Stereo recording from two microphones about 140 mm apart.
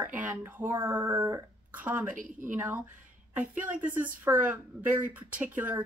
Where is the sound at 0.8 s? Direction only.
35° right (ahead or behind).